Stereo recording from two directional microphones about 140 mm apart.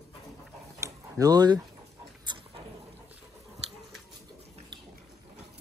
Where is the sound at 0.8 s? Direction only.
30° right (ahead or behind).